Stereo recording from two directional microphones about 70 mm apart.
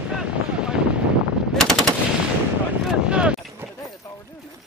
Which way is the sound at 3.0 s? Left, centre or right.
Centre.